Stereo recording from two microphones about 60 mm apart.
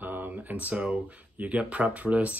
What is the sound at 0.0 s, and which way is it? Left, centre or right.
Speech, right.